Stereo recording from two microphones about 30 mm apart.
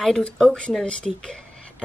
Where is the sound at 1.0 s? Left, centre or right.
Centre.